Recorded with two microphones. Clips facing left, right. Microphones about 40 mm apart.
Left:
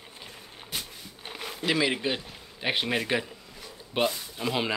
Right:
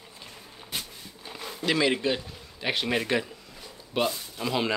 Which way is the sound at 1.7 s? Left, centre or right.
Centre.